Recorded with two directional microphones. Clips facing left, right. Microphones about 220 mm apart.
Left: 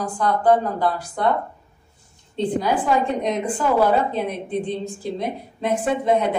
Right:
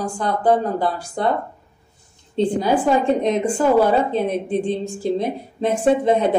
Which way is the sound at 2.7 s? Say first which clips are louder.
Right 4 dB; 30° right (ahead or behind).